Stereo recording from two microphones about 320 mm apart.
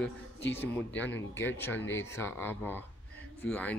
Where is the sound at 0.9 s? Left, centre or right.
Left.